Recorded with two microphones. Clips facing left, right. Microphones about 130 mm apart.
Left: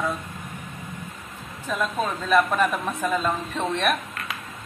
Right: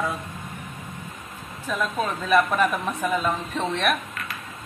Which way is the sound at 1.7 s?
Centre (ahead or behind).